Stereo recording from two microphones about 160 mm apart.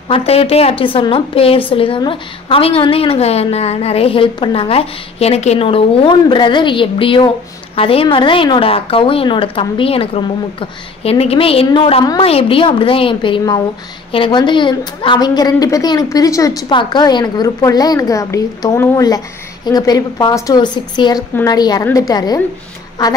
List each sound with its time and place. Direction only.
0.1 s a woman's voice: 40° left (ahead or behind)